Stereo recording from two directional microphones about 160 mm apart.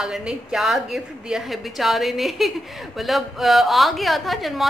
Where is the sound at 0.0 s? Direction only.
5° right (ahead or behind).